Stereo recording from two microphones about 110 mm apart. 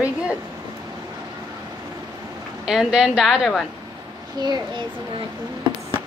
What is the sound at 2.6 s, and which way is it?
A woman's voice, 5° right (ahead or behind).